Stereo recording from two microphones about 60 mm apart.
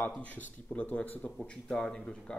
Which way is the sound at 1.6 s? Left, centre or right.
Centre.